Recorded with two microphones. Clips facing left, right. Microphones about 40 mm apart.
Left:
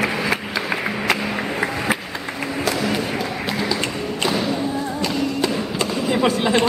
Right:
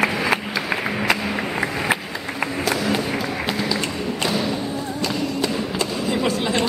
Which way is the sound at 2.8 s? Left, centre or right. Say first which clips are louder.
Even; centre.